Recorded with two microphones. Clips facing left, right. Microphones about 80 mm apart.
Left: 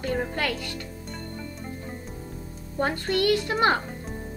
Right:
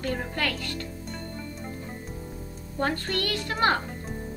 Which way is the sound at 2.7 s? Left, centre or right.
Centre.